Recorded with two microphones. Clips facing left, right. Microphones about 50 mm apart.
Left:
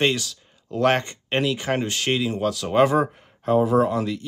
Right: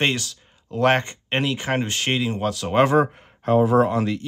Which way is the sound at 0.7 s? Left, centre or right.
Centre.